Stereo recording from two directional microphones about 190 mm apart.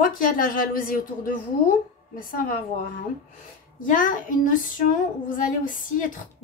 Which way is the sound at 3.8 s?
45° left (ahead or behind).